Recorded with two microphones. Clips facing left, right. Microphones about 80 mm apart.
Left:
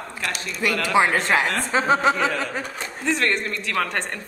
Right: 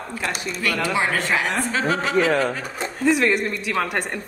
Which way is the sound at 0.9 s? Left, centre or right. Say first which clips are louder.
Left 5 dB; left.